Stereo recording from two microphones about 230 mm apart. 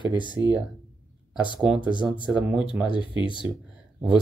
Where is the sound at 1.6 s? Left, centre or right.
Centre.